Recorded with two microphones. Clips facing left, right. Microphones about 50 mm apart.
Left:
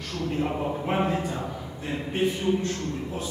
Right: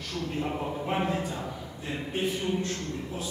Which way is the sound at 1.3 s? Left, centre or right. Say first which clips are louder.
Left 3 dB; centre.